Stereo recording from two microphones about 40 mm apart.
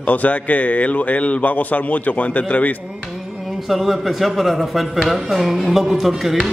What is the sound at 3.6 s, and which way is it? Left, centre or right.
A man's voice, centre.